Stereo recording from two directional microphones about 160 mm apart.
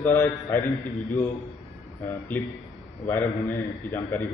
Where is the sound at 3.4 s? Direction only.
15° left (ahead or behind).